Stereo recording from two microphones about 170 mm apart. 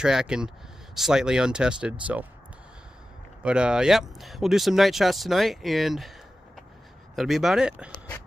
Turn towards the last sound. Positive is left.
turn(degrees=-5)  # may be behind; listen again after turning